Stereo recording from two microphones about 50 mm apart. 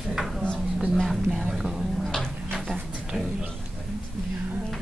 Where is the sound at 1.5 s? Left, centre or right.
Centre.